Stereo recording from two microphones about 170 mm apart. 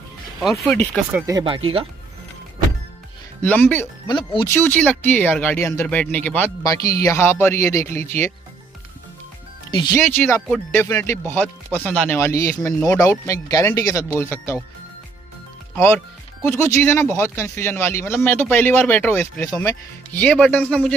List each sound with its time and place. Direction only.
0.4 s speech: centre (ahead or behind)
1.1 s speech: 20° right (ahead or behind)
1.4 s speech: 30° right (ahead or behind)
3.4 s speech: 10° left (ahead or behind)
4.1 s speech: 30° left (ahead or behind)
4.5 s speech: 10° left (ahead or behind)
9.7 s speech: 25° left (ahead or behind)
9.9 s speech: 15° left (ahead or behind)
15.7 s speech: 15° left (ahead or behind)
20.2 s speech: 5° left (ahead or behind)